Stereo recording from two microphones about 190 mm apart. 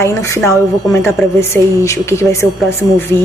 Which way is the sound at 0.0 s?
15° left (ahead or behind).